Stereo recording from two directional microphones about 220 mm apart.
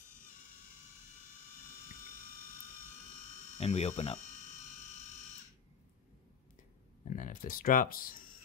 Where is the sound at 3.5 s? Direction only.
30° left (ahead or behind).